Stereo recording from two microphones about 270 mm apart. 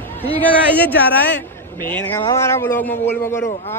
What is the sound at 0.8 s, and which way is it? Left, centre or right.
Speech, centre.